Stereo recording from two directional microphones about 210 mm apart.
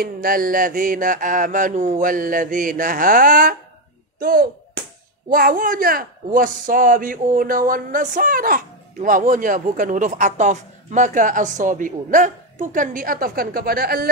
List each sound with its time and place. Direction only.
0.0 s speech: 45° right (ahead or behind)